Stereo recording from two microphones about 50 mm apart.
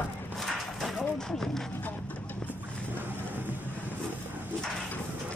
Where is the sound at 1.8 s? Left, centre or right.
Left.